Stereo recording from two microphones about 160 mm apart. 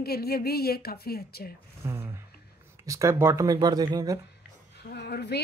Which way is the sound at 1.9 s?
15° right (ahead or behind).